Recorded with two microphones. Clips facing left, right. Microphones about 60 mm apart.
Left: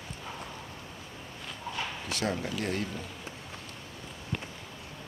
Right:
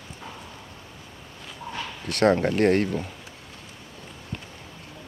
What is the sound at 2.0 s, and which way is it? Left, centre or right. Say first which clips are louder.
Speech: right 14 dB; right.